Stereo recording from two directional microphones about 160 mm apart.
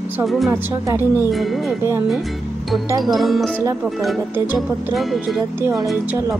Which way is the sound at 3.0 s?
Centre (ahead or behind).